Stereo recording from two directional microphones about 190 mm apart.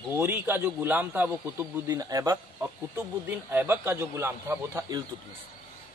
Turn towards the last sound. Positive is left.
turn(degrees=-15)  # may be behind; listen again after turning